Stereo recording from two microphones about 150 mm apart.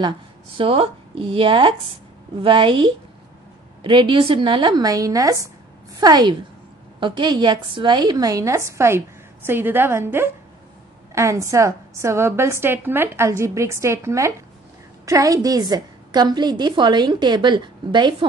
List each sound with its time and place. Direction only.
0.6 s a woman's voice: 35° right (ahead or behind)